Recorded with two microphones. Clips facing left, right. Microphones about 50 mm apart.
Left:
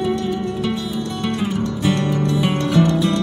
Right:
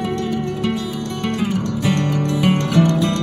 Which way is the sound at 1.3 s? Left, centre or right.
Centre.